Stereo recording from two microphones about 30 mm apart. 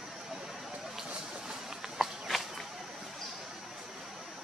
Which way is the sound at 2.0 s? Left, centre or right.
Centre.